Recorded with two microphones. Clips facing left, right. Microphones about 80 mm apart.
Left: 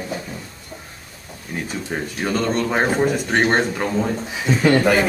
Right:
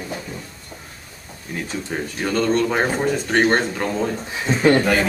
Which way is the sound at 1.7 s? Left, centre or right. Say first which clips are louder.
Even; centre.